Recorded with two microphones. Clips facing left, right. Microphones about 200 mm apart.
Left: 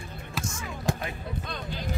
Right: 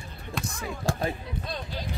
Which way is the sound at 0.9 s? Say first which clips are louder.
Even; 15° left (ahead or behind).